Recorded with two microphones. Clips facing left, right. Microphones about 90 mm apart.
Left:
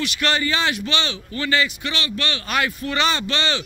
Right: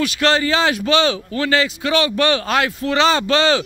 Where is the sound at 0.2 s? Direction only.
90° right.